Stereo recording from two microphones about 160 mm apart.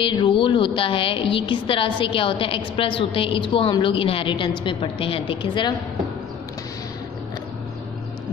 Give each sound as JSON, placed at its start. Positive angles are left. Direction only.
{"t": 0.0, "sound": "a woman's voice", "side_deg": 30}